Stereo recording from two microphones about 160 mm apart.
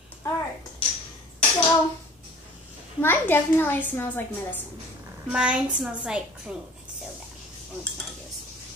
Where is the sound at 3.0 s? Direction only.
15° left (ahead or behind).